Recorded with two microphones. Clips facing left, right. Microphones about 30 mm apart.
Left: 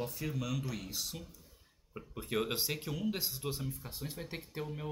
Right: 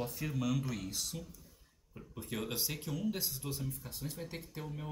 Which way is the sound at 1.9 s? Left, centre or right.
Left.